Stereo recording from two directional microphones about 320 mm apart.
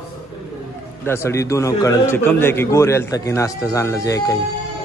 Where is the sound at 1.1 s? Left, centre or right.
Centre.